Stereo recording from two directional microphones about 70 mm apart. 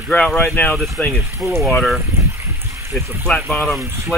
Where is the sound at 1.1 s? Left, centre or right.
Right.